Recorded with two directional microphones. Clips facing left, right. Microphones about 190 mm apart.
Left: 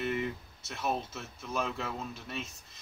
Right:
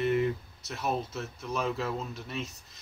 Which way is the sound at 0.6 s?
Centre (ahead or behind).